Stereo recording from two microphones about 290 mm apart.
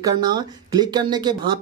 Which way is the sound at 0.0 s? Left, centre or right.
Centre.